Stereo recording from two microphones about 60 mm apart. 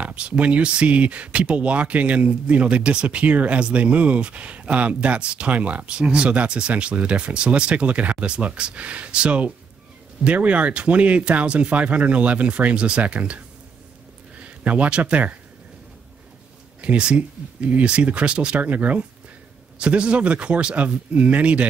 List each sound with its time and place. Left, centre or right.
0.0 s speech: centre
14.4 s speech: right
16.8 s speech: centre